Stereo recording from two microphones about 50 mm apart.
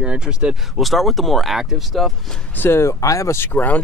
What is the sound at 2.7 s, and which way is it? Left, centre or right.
Speech, left.